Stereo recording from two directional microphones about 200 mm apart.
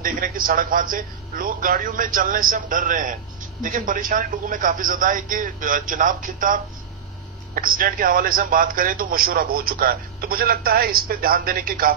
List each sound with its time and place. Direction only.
0.0 s speech: 45° right (ahead or behind)